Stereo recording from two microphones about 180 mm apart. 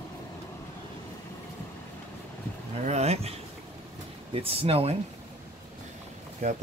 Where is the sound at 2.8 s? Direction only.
35° right (ahead or behind).